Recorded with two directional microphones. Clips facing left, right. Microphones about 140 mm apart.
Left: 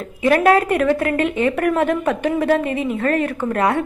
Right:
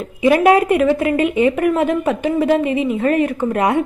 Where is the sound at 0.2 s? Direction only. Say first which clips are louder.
Right 2 dB; 10° right (ahead or behind).